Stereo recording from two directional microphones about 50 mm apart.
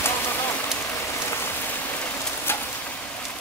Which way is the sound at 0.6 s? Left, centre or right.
Left.